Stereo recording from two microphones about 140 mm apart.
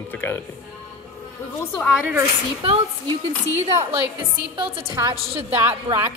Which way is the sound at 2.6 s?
40° right (ahead or behind).